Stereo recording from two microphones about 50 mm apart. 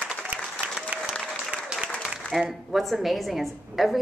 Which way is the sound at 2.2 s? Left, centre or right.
Left.